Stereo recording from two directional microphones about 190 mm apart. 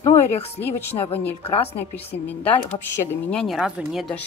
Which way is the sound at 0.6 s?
10° left (ahead or behind).